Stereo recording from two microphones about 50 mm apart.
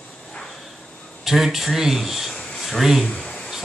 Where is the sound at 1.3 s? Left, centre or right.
Centre.